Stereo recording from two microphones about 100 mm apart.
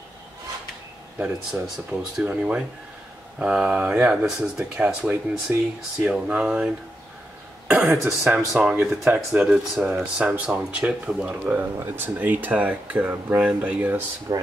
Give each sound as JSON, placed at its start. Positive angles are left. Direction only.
{"t": 1.2, "sound": "speech", "side_deg": -5}
{"t": 14.3, "sound": "speech", "side_deg": -40}